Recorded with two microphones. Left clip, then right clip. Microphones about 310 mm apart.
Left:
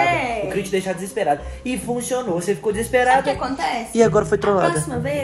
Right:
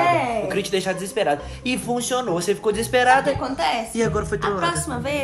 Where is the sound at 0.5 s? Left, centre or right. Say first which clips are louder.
Even; centre.